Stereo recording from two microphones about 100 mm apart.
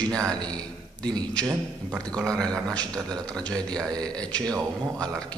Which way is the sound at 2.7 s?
40° right (ahead or behind).